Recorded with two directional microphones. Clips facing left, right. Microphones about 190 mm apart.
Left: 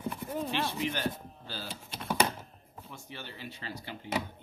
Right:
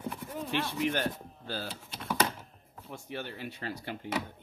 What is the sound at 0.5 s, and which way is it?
Speech, 50° right (ahead or behind).